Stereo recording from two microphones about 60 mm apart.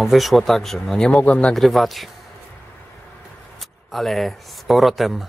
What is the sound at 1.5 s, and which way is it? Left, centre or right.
Speech, centre.